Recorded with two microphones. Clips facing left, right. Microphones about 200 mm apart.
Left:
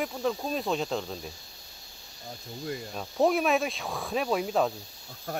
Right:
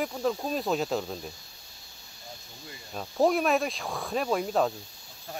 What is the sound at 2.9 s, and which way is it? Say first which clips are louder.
Speech: right 1 dB; centre (ahead or behind).